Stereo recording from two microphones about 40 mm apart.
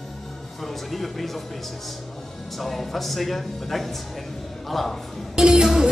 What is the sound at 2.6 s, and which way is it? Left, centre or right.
A man's voice, centre.